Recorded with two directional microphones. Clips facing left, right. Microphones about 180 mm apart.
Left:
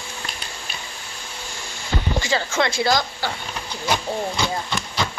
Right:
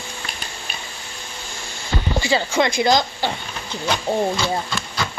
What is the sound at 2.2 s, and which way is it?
Speech, 15° right (ahead or behind).